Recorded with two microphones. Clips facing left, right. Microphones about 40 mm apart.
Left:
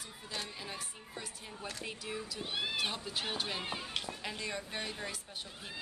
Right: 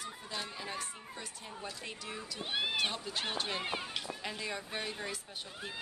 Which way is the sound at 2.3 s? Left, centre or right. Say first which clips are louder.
Right 4 dB; right.